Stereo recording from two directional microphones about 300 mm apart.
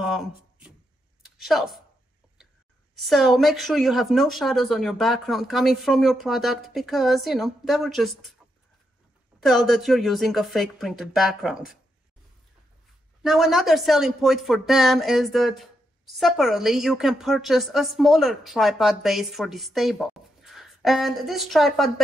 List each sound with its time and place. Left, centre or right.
0.0 s a sound: centre
3.0 s a woman's voice: centre
9.4 s a woman's voice: centre
13.2 s a woman's voice: centre